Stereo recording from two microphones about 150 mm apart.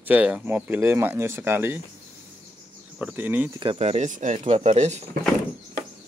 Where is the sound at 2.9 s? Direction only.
10° right (ahead or behind).